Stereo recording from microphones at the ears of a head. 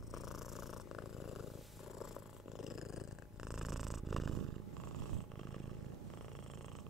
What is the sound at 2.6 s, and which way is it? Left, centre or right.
Purr, left.